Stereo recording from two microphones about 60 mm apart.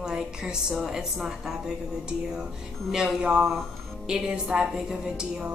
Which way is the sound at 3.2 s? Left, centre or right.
Centre.